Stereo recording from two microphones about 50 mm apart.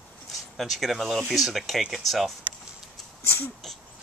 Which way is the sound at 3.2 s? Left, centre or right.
Left.